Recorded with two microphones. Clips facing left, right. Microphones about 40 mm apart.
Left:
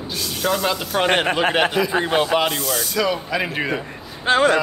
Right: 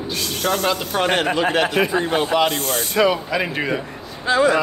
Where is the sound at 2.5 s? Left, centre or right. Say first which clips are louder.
Right 3 dB; right.